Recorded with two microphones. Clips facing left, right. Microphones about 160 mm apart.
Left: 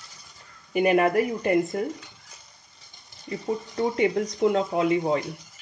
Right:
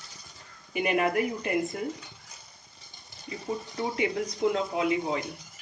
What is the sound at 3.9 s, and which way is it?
Speech, 40° left (ahead or behind).